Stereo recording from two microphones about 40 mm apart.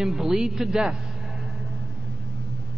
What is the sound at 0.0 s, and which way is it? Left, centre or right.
Speech, centre.